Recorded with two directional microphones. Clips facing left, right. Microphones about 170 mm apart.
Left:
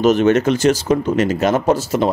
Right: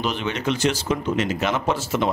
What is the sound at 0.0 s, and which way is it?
Speech, 45° left (ahead or behind).